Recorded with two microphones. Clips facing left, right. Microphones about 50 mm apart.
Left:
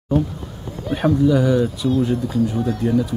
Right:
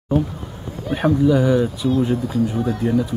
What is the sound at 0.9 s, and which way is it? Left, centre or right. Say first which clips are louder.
Speech: even; centre.